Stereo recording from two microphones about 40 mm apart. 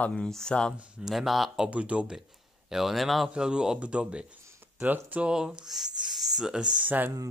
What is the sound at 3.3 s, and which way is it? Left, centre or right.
Speech, centre.